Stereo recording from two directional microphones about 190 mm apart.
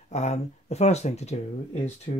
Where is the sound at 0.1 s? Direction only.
35° left (ahead or behind).